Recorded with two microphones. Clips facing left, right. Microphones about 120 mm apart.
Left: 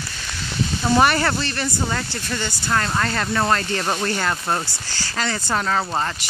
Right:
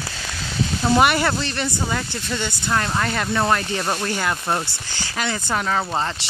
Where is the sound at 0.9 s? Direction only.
10° right (ahead or behind).